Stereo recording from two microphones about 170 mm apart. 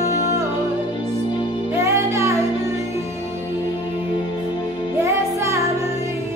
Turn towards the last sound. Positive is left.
turn(degrees=-15)  # may be behind; listen again after turning